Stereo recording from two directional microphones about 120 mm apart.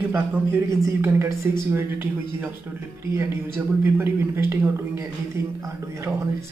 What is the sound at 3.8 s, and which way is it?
Speech, 20° right (ahead or behind).